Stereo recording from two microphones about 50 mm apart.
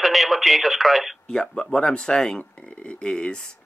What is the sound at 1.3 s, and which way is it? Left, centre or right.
Speech, centre.